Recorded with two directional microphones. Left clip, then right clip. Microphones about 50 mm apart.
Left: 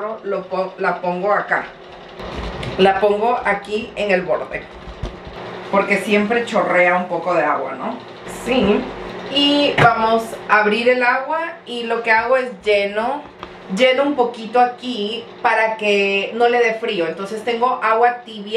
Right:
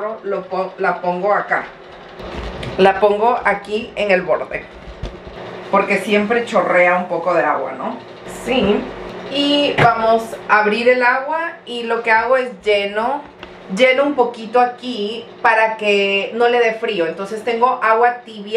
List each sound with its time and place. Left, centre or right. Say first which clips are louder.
0.5 s speech: right 1 dB; right
2.2 s vehicle: even; right
2.8 s a woman's voice: right 2 dB; right
5.7 s a woman's voice: right 1 dB; right
11.3 s a sound: right 1 dB; right
12.1 s a woman's voice: right 1 dB; right